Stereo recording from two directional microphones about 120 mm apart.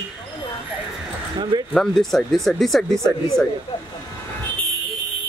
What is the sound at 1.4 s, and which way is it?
Speech, 40° right (ahead or behind).